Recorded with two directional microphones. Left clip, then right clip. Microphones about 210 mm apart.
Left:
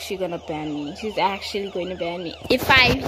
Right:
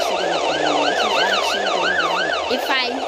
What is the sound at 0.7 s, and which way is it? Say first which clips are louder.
Emergency vehicle: right 14 dB; 50° right (ahead or behind).